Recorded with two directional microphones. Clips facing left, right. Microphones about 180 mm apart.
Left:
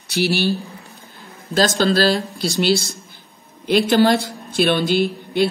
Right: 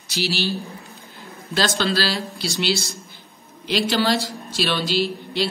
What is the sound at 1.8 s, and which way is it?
Speech, 45° left (ahead or behind).